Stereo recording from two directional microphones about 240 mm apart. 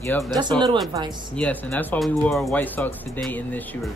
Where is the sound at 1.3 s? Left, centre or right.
Centre.